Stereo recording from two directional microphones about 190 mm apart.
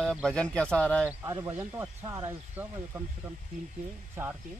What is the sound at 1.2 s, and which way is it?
Speech, 20° right (ahead or behind).